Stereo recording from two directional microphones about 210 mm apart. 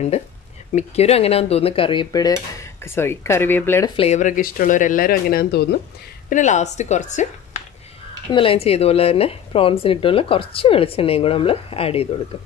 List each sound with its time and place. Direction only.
0.7 s a woman's voice: 30° left (ahead or behind); by 3.9 s 10° left (ahead or behind)
3.9 s speech: 30° left (ahead or behind); by 5.8 s 50° left (ahead or behind)
6.3 s speech: 35° left (ahead or behind)
8.3 s a woman's voice: 25° left (ahead or behind)